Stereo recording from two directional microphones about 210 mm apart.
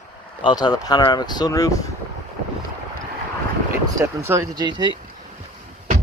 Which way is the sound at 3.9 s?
15° right (ahead or behind).